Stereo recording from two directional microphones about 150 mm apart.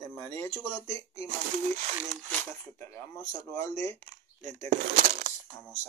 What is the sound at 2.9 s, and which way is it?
Speech, 20° left (ahead or behind).